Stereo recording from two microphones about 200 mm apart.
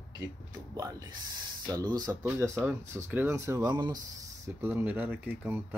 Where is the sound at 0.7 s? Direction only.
15° right (ahead or behind).